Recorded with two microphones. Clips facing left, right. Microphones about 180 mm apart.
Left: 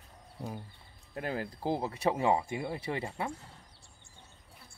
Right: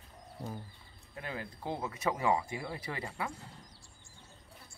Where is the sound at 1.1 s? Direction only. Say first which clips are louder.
Left 6 dB; 45° left (ahead or behind); by 3.3 s 25° left (ahead or behind).